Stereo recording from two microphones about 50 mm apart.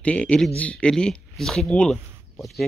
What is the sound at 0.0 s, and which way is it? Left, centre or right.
Speech, left.